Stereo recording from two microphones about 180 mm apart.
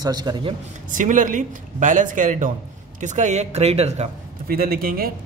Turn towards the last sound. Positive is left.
turn(degrees=-55)  # may be behind; listen again after turning